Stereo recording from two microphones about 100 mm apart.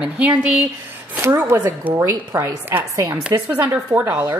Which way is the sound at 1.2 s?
25° right (ahead or behind).